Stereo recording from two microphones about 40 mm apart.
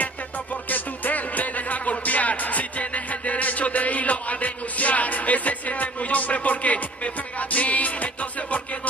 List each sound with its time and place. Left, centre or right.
0.7 s music: left